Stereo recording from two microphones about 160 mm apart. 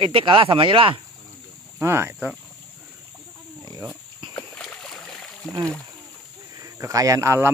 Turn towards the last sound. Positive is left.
turn(degrees=-20)  # may be behind; listen again after turning